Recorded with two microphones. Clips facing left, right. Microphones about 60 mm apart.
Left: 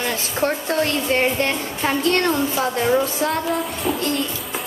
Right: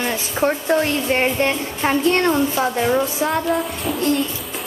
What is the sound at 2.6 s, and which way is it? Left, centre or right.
A woman's voice, centre.